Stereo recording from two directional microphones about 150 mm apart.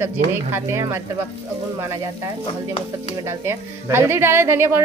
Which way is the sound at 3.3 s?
15° right (ahead or behind).